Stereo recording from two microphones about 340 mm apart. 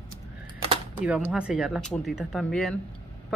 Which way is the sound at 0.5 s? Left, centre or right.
Centre.